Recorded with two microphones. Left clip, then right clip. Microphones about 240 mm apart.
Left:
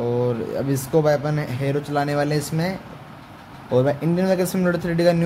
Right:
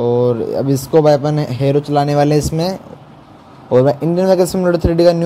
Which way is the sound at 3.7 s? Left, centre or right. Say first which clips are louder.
Right 8 dB; centre.